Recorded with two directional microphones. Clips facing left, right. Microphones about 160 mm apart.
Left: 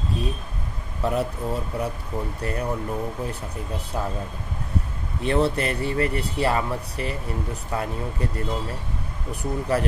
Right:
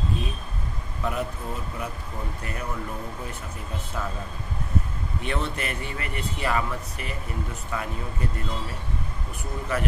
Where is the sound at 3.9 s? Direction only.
25° left (ahead or behind).